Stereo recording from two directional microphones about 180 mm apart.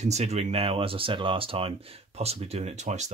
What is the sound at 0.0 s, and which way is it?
Speech, 40° right (ahead or behind).